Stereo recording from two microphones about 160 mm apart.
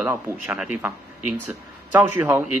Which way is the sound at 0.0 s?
15° right (ahead or behind).